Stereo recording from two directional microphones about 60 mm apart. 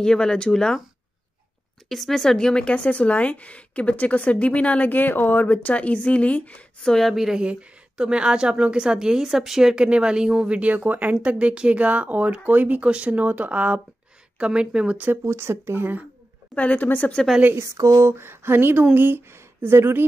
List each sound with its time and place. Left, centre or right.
0.0 s speech: centre
1.9 s speech: centre; by 6.6 s left
6.8 s a woman's voice: centre
15.2 s speech: right
16.5 s speech: left
17.6 s a sound: right
18.0 s speech: right